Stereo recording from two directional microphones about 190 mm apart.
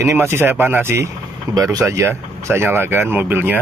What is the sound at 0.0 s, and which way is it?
Speech, 15° right (ahead or behind).